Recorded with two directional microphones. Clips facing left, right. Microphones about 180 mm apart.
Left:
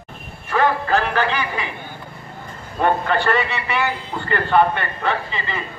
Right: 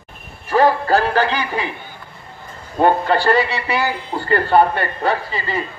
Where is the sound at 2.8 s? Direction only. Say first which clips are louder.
Right 4 dB; 35° right (ahead or behind).